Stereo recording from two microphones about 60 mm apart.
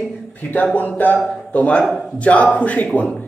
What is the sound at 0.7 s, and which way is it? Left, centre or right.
Speech, left.